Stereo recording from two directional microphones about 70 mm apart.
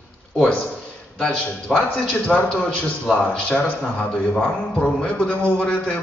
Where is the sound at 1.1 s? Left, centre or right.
Centre.